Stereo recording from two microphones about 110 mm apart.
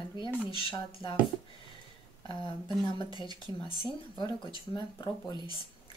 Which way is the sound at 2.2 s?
45° left (ahead or behind).